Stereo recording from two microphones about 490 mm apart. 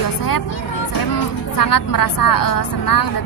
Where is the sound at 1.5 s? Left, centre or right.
Left.